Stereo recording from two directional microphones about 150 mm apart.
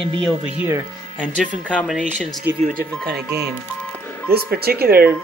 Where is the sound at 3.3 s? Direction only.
90° right.